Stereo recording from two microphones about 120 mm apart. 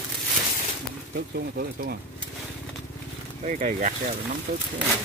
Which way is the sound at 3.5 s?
90° right.